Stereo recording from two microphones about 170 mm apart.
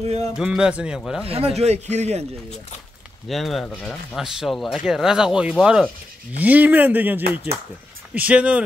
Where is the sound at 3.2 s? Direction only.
Centre (ahead or behind).